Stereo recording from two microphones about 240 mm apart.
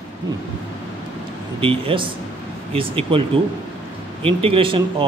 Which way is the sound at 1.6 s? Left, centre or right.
Right.